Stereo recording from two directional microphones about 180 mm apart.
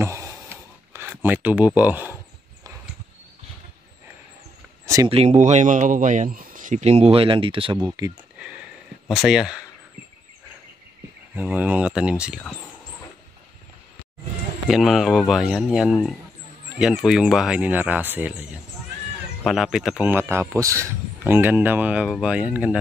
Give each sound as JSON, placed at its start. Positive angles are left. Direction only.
{"t": 0.0, "sound": "a sound", "side_deg": -15}
{"t": 1.8, "sound": "a man's voice", "side_deg": -10}
{"t": 4.8, "sound": "a sound", "side_deg": -15}
{"t": 5.1, "sound": "speech", "side_deg": -35}
{"t": 9.1, "sound": "speech", "side_deg": 0}
{"t": 11.3, "sound": "a man's voice", "side_deg": -10}
{"t": 14.7, "sound": "speech", "side_deg": 0}
{"t": 19.4, "sound": "a man's voice", "side_deg": 0}